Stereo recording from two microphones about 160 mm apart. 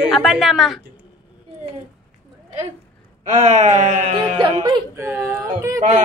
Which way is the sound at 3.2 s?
45° right (ahead or behind).